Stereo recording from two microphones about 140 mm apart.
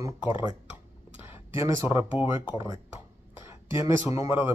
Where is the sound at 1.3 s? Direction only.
15° right (ahead or behind).